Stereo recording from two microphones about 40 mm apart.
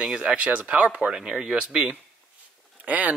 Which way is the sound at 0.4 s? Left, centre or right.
Right.